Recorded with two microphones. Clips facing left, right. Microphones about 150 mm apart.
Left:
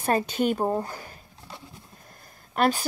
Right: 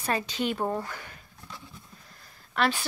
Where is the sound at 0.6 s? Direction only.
20° left (ahead or behind).